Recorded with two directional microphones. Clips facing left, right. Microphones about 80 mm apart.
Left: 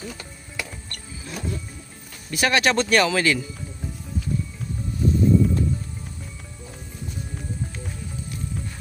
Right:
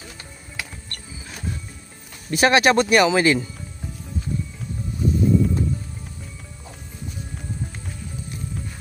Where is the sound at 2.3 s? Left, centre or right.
Right.